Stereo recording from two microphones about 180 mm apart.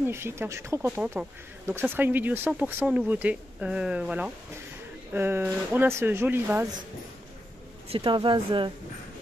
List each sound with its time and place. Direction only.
0.0 s speech: 15° right (ahead or behind)
7.9 s speech: 25° right (ahead or behind)